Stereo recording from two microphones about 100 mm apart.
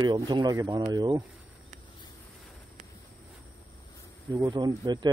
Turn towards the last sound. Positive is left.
turn(degrees=-40)  # may be behind; listen again after turning